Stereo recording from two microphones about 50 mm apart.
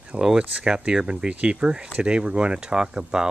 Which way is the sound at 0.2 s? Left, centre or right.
Centre.